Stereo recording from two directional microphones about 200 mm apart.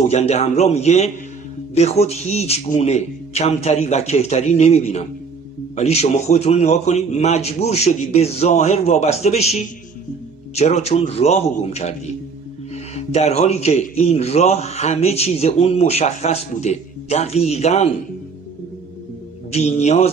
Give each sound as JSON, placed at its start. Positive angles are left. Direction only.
{"t": 0.1, "sound": "a man's voice", "side_deg": 35}
{"t": 12.9, "sound": "a man's voice", "side_deg": 30}
{"t": 19.5, "sound": "a man's voice", "side_deg": 35}